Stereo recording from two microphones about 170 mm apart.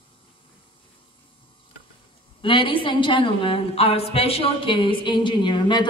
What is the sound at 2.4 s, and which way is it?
A woman's voice, 30° left (ahead or behind).